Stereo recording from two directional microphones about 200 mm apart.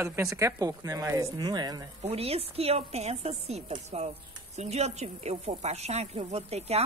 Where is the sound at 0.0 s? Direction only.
15° right (ahead or behind).